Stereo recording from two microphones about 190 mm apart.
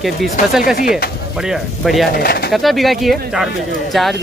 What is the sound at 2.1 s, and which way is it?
Speech, 55° left (ahead or behind).